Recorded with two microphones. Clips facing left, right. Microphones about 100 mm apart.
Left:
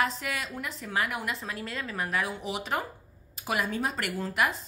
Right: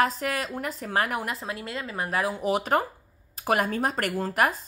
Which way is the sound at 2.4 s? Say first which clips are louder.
Right 8 dB; 50° right (ahead or behind).